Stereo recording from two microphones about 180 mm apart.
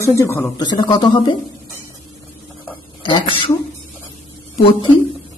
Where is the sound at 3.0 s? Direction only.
25° left (ahead or behind).